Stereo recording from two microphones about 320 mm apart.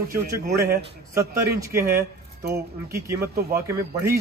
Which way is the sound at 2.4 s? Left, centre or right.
Right.